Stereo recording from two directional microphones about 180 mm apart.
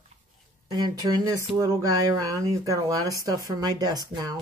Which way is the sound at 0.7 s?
25° right (ahead or behind).